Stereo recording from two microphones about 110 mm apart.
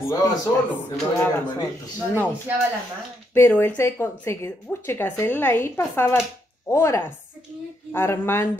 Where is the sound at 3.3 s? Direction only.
20° left (ahead or behind).